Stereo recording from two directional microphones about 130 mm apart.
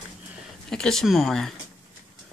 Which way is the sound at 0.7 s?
5° left (ahead or behind).